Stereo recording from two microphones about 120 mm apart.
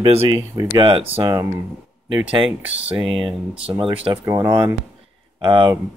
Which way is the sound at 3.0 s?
45° right (ahead or behind).